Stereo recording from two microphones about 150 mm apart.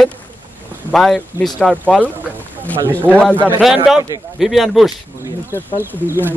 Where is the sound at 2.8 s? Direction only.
15° right (ahead or behind).